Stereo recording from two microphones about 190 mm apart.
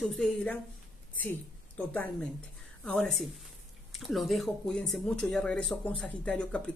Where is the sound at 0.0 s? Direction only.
5° left (ahead or behind).